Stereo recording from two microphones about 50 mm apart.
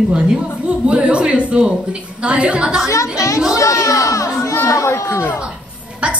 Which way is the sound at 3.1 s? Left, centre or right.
Left.